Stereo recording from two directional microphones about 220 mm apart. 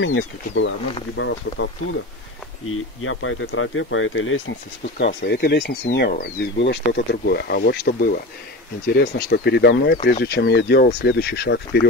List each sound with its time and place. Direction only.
0.0 s speech: 60° left (ahead or behind)
2.7 s speech: 65° left (ahead or behind); by 11.9 s 50° left (ahead or behind)